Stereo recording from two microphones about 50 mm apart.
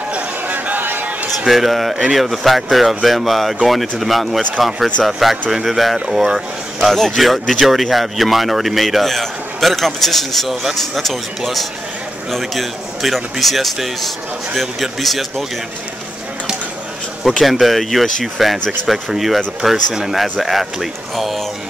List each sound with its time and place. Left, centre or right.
0.1 s a sound: right
1.4 s speech: centre
17.4 s speech: centre